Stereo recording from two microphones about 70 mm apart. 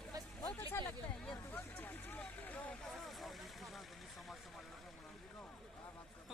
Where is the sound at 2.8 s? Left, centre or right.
Centre.